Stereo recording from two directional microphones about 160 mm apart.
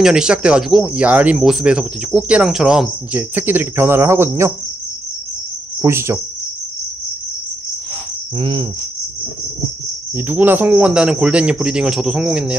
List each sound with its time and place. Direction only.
0.0 s speech: 5° right (ahead or behind)
5.8 s cricket: 15° right (ahead or behind)
8.4 s cricket: 30° right (ahead or behind)
10.1 s speech: 10° right (ahead or behind)